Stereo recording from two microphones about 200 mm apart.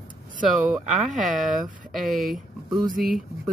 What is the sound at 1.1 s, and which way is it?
Speech, 40° right (ahead or behind).